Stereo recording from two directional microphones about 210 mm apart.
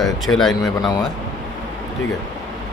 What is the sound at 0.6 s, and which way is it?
Speech, 20° left (ahead or behind).